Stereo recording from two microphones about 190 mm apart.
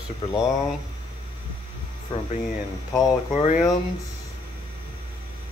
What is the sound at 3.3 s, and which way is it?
Speech, 40° left (ahead or behind).